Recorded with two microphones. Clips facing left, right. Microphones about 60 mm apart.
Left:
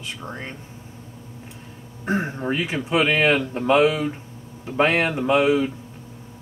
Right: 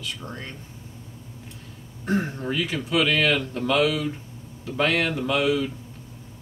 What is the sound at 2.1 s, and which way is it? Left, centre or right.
Speech, left.